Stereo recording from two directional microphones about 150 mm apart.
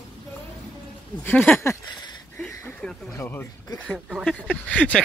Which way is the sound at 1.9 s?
30° left (ahead or behind).